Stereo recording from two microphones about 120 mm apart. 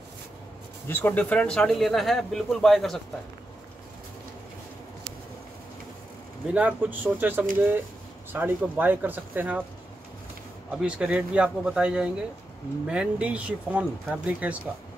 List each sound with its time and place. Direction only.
0.8 s speech: 15° left (ahead or behind)
6.5 s speech: 10° right (ahead or behind)
10.7 s speech: 5° right (ahead or behind)